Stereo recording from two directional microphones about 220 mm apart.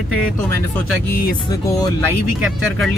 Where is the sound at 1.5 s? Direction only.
15° left (ahead or behind).